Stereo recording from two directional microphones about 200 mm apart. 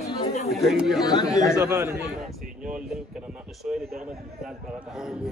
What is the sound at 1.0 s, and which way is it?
Speech, 20° left (ahead or behind).